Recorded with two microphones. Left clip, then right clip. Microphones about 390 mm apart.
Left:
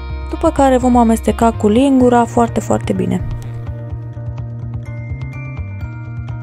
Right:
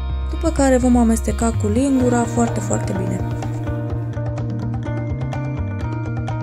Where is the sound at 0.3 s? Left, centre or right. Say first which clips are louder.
Left 5 dB; centre.